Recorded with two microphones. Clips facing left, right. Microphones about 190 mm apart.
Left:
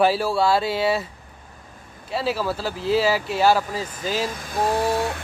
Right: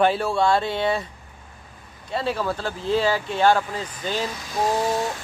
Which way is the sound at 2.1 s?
5° left (ahead or behind).